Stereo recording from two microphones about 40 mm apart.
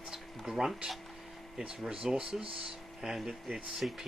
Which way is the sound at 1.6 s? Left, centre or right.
Right.